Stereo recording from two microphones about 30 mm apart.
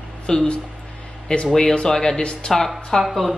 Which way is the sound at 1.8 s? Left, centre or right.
Left.